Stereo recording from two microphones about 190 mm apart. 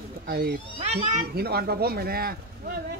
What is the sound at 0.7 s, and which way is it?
Speech, 35° right (ahead or behind).